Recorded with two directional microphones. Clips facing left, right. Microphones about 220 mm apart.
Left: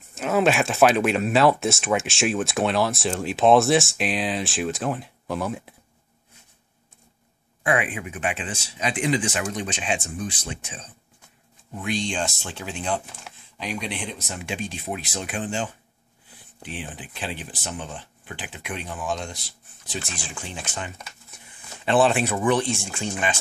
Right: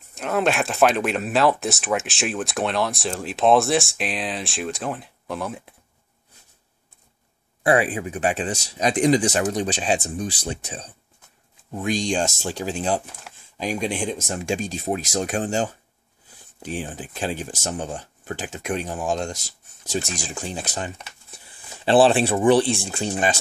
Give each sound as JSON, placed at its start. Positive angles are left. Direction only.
{"t": 0.1, "sound": "speech", "side_deg": 0}
{"t": 7.6, "sound": "speech", "side_deg": -35}